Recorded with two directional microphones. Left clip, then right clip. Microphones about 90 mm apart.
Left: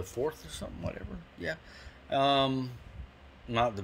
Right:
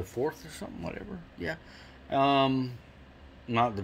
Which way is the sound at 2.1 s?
20° left (ahead or behind).